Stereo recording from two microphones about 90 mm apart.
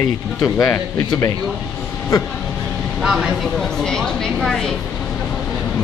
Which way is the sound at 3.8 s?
5° left (ahead or behind).